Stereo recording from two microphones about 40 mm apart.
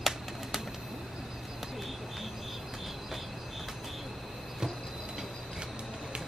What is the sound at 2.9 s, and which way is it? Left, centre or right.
Train, centre.